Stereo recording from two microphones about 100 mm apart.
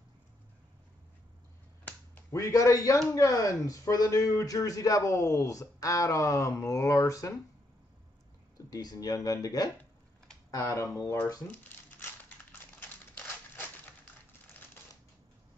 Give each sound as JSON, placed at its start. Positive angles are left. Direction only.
{"t": 2.3, "sound": "speech", "side_deg": 30}
{"t": 8.6, "sound": "speech", "side_deg": 35}
{"t": 11.4, "sound": "crumpling", "side_deg": 15}